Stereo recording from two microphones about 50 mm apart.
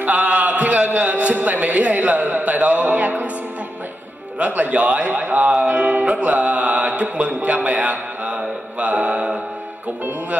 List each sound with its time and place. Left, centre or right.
0.0 s a man's voice: right
4.4 s speech: right